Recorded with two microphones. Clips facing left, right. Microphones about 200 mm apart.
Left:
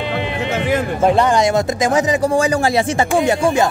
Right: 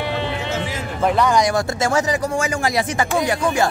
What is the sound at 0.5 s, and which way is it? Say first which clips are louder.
Music: left 7 dB; 60° left (ahead or behind).